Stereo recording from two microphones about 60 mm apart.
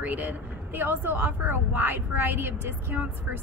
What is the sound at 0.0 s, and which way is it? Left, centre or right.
Speech, right.